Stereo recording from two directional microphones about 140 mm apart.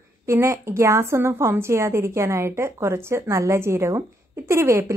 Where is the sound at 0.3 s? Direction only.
20° right (ahead or behind).